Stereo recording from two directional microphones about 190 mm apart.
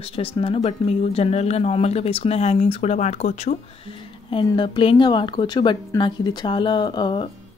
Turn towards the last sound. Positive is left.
turn(degrees=25)  # may be behind; listen again after turning